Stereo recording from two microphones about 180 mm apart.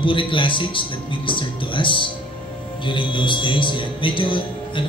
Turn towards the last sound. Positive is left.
turn(degrees=25)  # may be behind; listen again after turning